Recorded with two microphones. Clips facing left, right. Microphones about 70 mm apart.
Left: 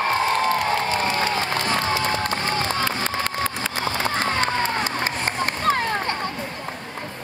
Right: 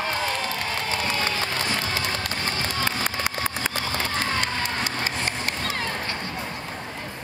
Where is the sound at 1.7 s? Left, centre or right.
Left.